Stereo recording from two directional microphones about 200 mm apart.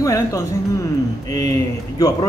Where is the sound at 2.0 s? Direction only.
20° left (ahead or behind).